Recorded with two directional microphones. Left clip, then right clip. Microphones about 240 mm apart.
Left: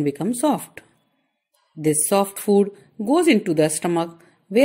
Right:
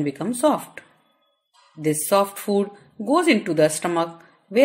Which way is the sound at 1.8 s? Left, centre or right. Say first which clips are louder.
Even; left.